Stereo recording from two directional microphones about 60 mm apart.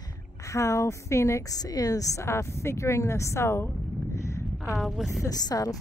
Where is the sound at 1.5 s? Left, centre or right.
Left.